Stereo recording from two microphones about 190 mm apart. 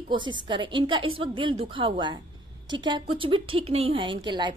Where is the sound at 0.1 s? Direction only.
25° right (ahead or behind).